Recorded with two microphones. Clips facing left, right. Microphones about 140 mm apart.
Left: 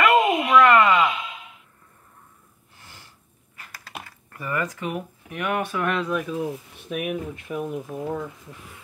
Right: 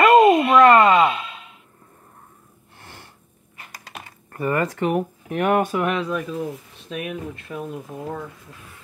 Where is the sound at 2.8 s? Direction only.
55° right (ahead or behind).